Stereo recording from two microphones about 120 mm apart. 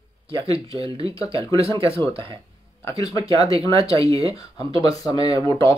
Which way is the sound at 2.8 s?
30° left (ahead or behind).